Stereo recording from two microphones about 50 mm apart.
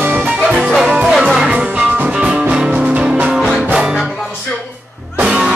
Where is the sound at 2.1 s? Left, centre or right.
Centre.